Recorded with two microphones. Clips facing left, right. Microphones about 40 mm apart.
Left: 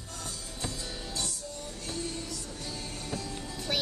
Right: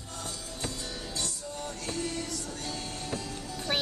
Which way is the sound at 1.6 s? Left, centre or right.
Right.